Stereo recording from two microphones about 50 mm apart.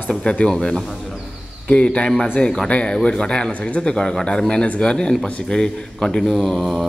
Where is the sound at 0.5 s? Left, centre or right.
Centre.